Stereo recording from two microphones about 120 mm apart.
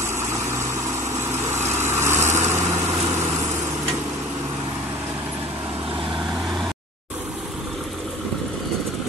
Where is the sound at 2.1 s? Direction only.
85° right.